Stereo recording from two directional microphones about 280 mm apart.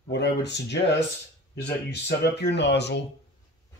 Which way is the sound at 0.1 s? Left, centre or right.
Left.